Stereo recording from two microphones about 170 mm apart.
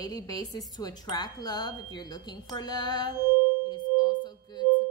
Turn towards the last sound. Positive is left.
turn(degrees=25)  # may be behind; listen again after turning